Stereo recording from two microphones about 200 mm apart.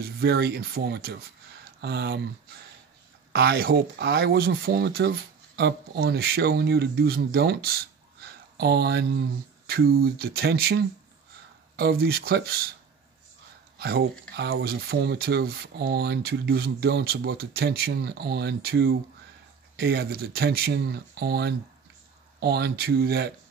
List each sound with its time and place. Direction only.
0.0 s speech: 50° right (ahead or behind)
3.3 s speech: 50° right (ahead or behind)
13.7 s speech: 55° right (ahead or behind)